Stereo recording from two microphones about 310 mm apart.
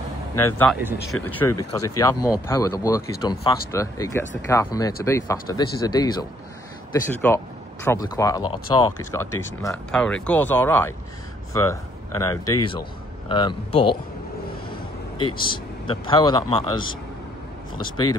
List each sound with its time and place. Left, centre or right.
0.6 s speech: centre
15.4 s speech: centre